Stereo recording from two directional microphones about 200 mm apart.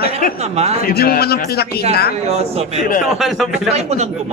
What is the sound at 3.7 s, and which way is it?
Speech, 35° right (ahead or behind).